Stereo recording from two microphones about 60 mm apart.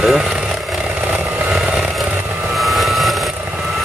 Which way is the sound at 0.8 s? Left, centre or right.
Right.